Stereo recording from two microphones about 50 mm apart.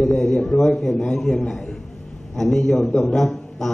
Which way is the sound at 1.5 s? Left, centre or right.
Centre.